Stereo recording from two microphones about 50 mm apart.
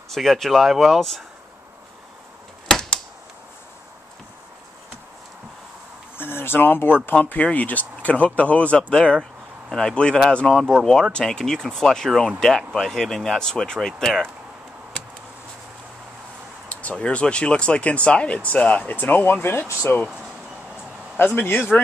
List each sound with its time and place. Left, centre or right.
0.1 s speech: centre
2.7 s a sound: centre
6.1 s speech: left
7.1 s speech: left; by 10.6 s centre
10.6 s speech: centre
10.9 s speech: centre
16.9 s speech: left
19.4 s speech: left
19.9 s speech: left
21.4 s speech: left